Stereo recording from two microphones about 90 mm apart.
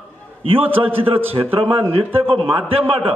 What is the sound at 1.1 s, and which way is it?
A man's voice, 90° right.